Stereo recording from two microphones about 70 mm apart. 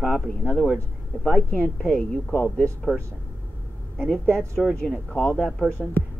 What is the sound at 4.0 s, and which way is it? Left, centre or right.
Speech, centre.